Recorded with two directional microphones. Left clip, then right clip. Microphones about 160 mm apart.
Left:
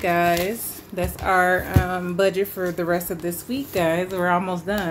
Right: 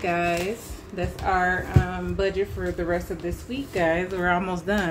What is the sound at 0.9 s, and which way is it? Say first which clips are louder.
A woman's voice: left 4 dB; 50° left (ahead or behind).